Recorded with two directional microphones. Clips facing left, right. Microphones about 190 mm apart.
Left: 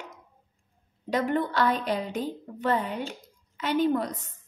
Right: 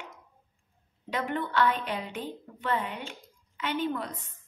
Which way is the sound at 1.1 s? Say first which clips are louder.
Left 5 dB; 40° left (ahead or behind).